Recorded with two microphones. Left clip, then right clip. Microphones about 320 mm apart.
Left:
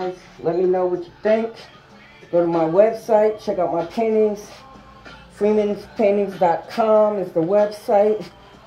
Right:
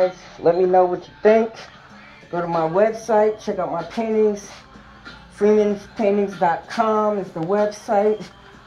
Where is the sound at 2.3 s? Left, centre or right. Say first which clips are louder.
Left 3 dB; centre.